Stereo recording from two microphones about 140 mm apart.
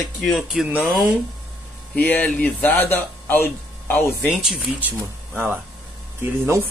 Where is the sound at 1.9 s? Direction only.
10° left (ahead or behind).